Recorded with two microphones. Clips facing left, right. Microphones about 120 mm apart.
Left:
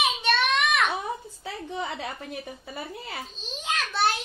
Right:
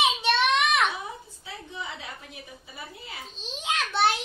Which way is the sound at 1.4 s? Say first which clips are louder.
Left 4 dB; 60° left (ahead or behind).